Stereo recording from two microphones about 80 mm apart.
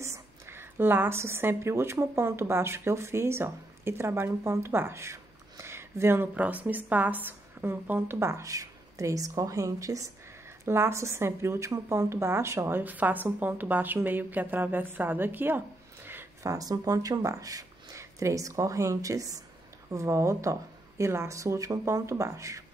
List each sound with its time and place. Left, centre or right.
0.0 s a woman's voice: right
8.2 s a woman's voice: right
16.4 s speech: right